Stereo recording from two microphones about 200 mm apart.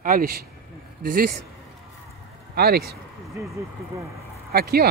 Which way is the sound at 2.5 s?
50° right (ahead or behind).